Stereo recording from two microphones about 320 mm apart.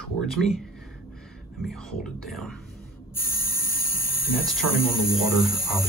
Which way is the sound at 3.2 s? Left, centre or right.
Left.